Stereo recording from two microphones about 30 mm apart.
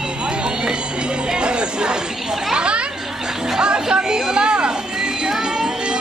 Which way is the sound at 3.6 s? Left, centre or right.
Right.